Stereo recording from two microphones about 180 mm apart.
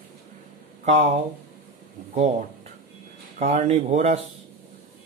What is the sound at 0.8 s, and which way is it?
Speech, 40° right (ahead or behind).